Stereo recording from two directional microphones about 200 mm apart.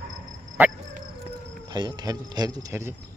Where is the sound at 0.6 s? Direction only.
10° right (ahead or behind).